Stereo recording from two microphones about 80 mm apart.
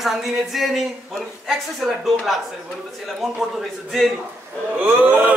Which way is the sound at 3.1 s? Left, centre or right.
Centre.